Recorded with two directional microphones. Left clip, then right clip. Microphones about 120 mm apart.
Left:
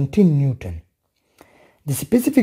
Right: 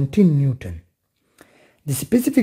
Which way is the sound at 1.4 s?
20° left (ahead or behind).